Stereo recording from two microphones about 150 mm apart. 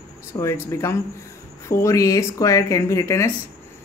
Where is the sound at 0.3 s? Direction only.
20° left (ahead or behind).